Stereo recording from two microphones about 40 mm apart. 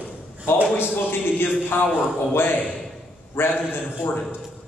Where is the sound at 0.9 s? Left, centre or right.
Left.